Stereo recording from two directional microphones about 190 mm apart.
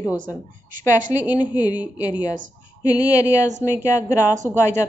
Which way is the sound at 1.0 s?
10° right (ahead or behind).